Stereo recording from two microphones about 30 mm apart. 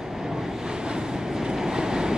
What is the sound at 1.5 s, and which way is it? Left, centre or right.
Train, right.